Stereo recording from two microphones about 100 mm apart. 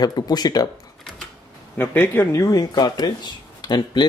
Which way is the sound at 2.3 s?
35° left (ahead or behind).